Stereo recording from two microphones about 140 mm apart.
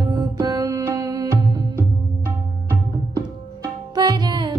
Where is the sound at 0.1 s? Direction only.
35° right (ahead or behind).